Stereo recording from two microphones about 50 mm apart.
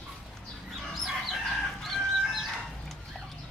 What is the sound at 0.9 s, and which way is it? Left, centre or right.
Chicken, centre.